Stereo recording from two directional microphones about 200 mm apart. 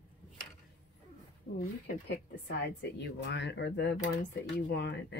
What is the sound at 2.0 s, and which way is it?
Speech, 60° left (ahead or behind).